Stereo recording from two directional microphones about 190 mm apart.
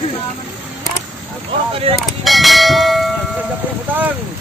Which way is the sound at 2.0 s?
Centre (ahead or behind).